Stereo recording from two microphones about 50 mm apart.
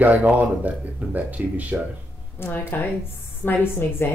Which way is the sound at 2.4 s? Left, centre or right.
Left.